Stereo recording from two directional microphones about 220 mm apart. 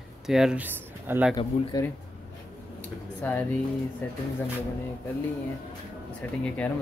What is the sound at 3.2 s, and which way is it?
Speech, 10° left (ahead or behind).